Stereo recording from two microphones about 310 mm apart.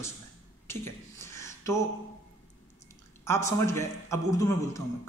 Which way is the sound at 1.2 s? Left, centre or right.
Centre.